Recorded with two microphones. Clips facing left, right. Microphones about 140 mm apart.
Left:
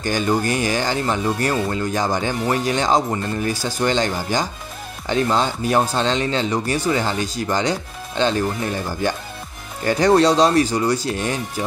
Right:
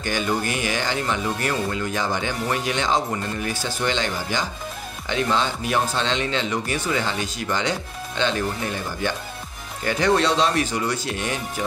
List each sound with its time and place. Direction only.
0.0 s speech: 35° left (ahead or behind)
9.8 s speech: 40° left (ahead or behind)